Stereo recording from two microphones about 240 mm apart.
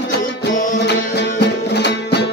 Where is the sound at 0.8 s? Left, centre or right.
Left.